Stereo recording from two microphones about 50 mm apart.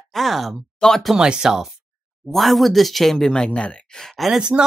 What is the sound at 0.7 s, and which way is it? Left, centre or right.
Speech, centre.